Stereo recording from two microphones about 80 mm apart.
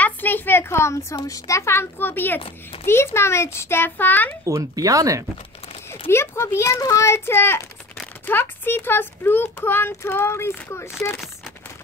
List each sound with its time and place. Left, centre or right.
0.0 s a sound: left
1.2 s a child's voice: left
4.5 s speech: right
5.9 s a child's voice: left